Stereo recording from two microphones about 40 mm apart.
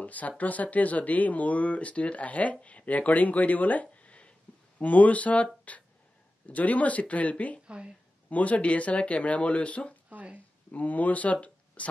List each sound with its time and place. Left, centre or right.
0.0 s speech: left
7.6 s speech: right
8.3 s speech: left
10.0 s speech: right
10.7 s speech: left
11.4 s a sound: left